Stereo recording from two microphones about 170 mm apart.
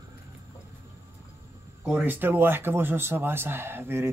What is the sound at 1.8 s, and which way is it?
Speech, 10° right (ahead or behind).